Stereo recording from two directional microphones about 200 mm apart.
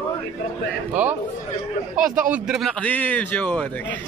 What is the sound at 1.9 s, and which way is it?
Speech, 40° right (ahead or behind).